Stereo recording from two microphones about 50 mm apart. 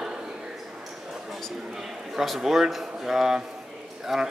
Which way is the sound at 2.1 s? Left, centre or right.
Centre.